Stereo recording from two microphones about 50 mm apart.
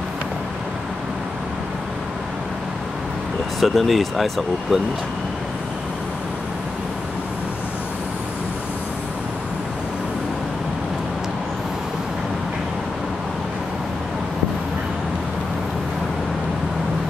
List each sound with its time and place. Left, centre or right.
3.6 s speech: centre